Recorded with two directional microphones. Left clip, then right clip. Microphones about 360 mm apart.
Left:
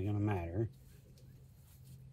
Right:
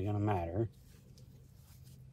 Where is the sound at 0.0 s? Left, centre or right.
Centre.